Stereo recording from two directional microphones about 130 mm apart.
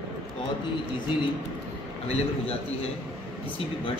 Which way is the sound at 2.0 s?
50° left (ahead or behind).